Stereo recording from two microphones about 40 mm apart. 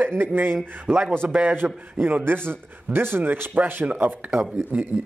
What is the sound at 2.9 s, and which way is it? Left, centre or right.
Speech, right.